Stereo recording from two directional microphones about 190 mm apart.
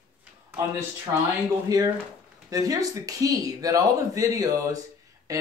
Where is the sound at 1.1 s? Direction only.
15° right (ahead or behind).